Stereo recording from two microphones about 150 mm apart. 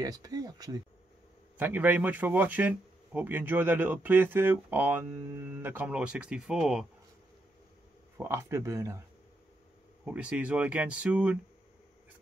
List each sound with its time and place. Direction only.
0.0 s speech: 25° right (ahead or behind)
1.6 s speech: 10° right (ahead or behind)
8.2 s speech: 20° right (ahead or behind)
10.0 s speech: 10° right (ahead or behind)